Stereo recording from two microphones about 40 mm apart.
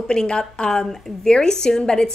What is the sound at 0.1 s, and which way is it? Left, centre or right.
A woman's voice, centre.